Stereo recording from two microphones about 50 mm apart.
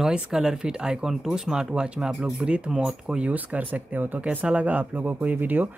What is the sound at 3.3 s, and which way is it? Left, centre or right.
Speech, right.